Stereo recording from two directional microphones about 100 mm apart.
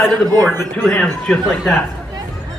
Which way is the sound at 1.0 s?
10° left (ahead or behind).